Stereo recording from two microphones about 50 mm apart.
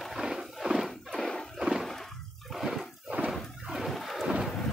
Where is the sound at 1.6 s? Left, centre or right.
Centre.